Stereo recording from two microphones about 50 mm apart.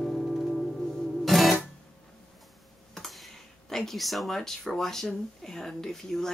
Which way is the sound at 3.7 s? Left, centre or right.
Centre.